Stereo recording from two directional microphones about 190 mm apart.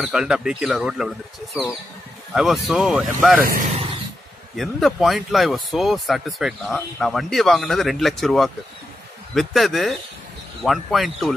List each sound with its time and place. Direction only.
0.0 s speech: 5° right (ahead or behind)
3.4 s speech: 45° right (ahead or behind)
4.6 s speech: centre (ahead or behind)